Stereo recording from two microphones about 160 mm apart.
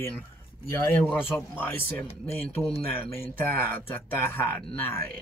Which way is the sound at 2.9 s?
10° left (ahead or behind).